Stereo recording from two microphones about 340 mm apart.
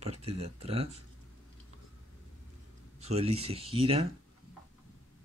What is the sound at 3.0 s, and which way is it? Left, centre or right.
Speech, centre.